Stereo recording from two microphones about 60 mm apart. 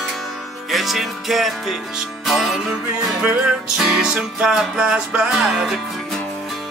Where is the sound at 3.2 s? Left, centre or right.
Right.